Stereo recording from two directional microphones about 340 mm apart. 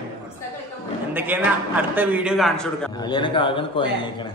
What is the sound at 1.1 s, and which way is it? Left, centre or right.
A man's voice, centre.